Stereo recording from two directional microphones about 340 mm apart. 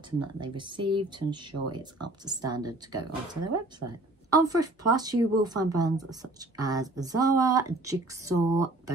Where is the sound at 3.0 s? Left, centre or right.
Right.